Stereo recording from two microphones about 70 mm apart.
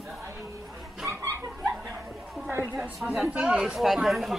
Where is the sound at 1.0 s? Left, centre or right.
Right.